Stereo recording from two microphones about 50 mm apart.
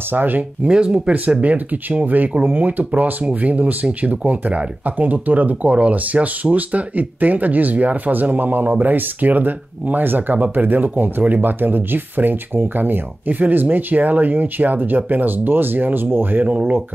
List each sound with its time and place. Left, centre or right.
0.1 s speech: right
0.7 s speech: centre
1.3 s speech: right